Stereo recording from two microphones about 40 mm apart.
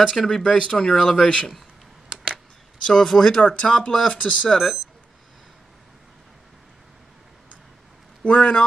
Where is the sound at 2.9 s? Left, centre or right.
Centre.